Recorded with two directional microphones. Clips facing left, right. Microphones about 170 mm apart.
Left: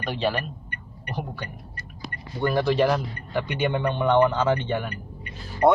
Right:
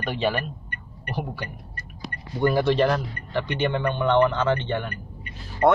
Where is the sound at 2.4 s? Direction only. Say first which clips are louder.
Right 1 dB; centre (ahead or behind).